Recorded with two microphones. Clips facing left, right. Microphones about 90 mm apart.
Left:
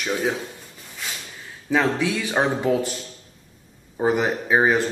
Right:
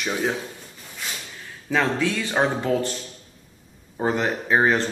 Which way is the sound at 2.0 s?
15° left (ahead or behind).